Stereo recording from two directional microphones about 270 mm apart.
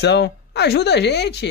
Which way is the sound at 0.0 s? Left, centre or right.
Left.